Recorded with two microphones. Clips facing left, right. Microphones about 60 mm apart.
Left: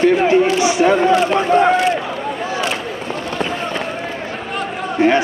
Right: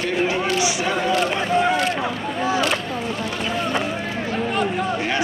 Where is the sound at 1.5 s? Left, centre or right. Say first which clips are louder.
Left 7 dB; left.